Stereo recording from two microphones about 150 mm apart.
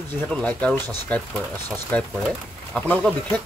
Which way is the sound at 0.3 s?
10° left (ahead or behind).